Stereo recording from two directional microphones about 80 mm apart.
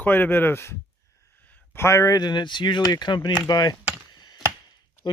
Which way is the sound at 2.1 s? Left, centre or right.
Left.